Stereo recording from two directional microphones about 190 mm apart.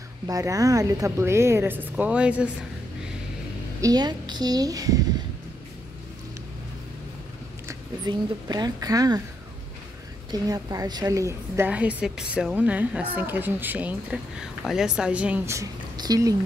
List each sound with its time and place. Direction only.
0.3 s a woman's voice: 15° right (ahead or behind)
3.8 s speech: 20° right (ahead or behind)
7.6 s speech: 20° right (ahead or behind)
10.3 s a woman's voice: 20° right (ahead or behind)